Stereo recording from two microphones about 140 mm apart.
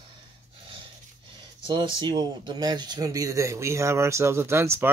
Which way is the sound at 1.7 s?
30° right (ahead or behind).